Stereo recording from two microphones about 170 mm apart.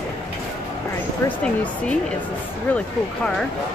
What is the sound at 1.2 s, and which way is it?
Speech, 10° left (ahead or behind).